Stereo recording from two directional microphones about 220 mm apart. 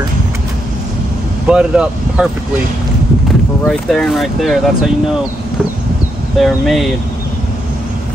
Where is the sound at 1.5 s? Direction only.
5° right (ahead or behind).